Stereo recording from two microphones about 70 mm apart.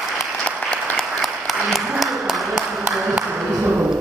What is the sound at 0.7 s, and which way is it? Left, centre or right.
Applause, centre.